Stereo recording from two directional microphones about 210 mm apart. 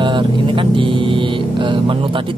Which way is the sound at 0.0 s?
25° right (ahead or behind).